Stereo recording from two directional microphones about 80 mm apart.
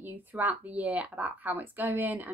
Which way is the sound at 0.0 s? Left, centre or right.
Right.